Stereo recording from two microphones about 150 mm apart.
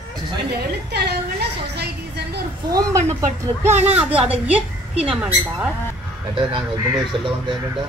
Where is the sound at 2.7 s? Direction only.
25° right (ahead or behind).